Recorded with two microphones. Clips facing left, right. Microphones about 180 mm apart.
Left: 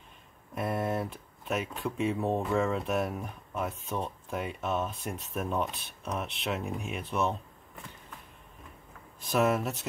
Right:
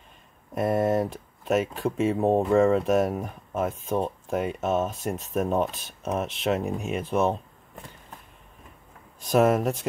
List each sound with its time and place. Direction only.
0.6 s speech: 45° right (ahead or behind)
9.2 s speech: 45° right (ahead or behind)